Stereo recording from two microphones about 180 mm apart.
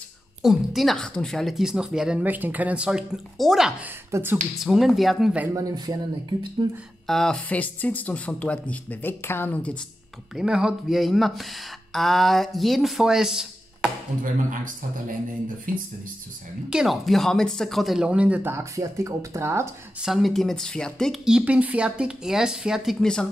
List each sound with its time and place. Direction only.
0.4 s speech: centre (ahead or behind)
4.6 s speech: centre (ahead or behind)
5.6 s speech: 20° right (ahead or behind)
7.1 s speech: 5° left (ahead or behind)
10.3 s speech: 5° right (ahead or behind)
14.2 s a man's voice: 50° right (ahead or behind)
16.6 s speech: 5° right (ahead or behind)
20.1 s speech: centre (ahead or behind)